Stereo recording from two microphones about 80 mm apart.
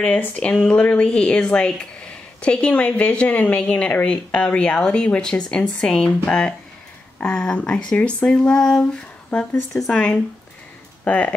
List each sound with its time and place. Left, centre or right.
0.0 s speech: centre
11.1 s speech: centre